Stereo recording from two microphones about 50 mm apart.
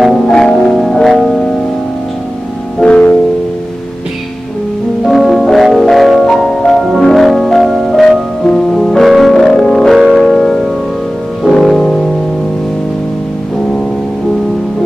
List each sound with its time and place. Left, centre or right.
0.0 s music: centre
0.3 s music: centre
0.6 s music: centre
2.8 s music: centre
5.0 s organ: centre
5.6 s music: centre
7.0 s organ: centre
7.9 s music: centre